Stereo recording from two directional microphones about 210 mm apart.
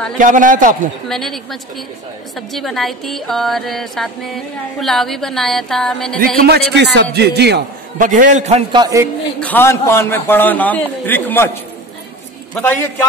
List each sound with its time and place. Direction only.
0.2 s a man's voice: 40° right (ahead or behind)
1.0 s music: centre (ahead or behind)
6.1 s a man's voice: 45° right (ahead or behind)
8.1 s a man's voice: 35° right (ahead or behind)
8.8 s a man's voice: 15° right (ahead or behind)
9.4 s a man's voice: 10° left (ahead or behind)